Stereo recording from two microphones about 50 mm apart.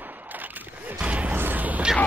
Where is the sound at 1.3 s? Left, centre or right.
Right.